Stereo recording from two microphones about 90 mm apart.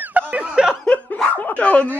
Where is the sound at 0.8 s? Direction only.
15° left (ahead or behind).